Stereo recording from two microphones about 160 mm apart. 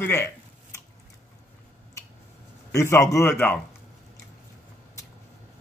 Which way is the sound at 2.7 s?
15° left (ahead or behind).